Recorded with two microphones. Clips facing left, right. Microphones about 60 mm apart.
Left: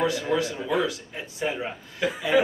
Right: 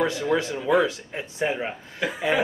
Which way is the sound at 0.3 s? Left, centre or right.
Right.